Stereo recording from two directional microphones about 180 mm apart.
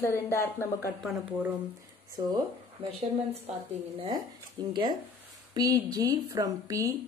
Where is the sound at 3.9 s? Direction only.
30° right (ahead or behind).